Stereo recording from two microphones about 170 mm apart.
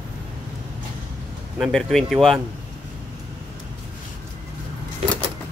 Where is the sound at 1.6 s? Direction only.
Centre (ahead or behind).